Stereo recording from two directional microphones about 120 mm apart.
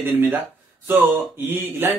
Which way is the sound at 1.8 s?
20° right (ahead or behind).